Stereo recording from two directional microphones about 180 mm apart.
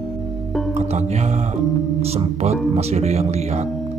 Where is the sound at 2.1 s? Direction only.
35° right (ahead or behind).